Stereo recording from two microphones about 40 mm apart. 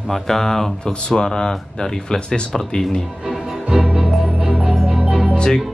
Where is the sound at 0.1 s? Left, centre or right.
Centre.